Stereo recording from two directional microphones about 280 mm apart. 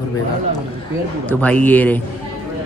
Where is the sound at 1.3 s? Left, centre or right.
Centre.